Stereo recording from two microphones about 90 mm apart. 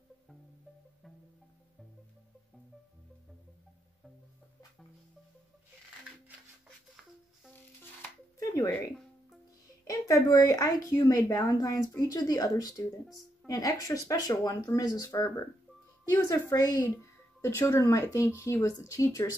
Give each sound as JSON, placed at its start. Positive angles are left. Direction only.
{"t": 8.4, "sound": "music", "side_deg": 40}
{"t": 9.8, "sound": "a woman's voice", "side_deg": 40}
{"t": 12.1, "sound": "a woman's voice", "side_deg": 45}
{"t": 17.0, "sound": "a woman's voice", "side_deg": 30}